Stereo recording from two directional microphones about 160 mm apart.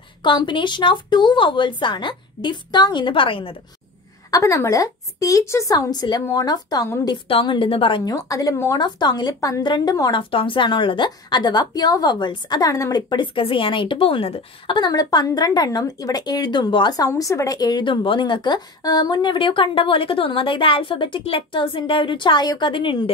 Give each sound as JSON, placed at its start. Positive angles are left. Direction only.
{"t": 0.2, "sound": "a woman's voice", "side_deg": 30}
{"t": 4.3, "sound": "a woman's voice", "side_deg": 20}